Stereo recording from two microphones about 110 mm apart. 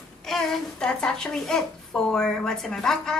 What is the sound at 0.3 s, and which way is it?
A woman's voice, 5° left (ahead or behind).